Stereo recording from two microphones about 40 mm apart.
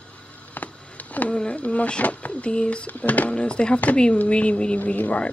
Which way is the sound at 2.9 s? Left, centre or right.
Left.